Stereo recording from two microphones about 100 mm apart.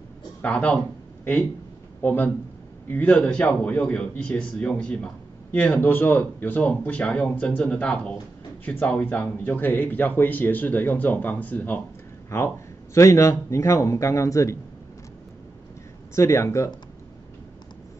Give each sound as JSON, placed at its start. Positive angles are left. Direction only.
{"t": 0.4, "sound": "speech", "side_deg": 10}
{"t": 2.0, "sound": "a man's voice", "side_deg": 20}
{"t": 16.2, "sound": "speech", "side_deg": 30}